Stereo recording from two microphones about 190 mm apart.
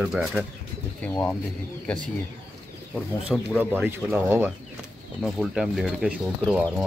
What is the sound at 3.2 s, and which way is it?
Speech, 5° right (ahead or behind).